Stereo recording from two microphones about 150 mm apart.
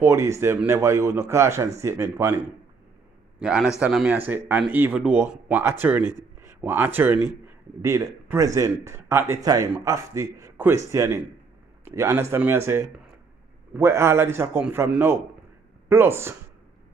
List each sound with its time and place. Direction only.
0.0 s speech: 20° right (ahead or behind)
3.3 s a man's voice: 5° right (ahead or behind)